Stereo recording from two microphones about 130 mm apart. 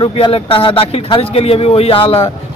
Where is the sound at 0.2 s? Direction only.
45° left (ahead or behind).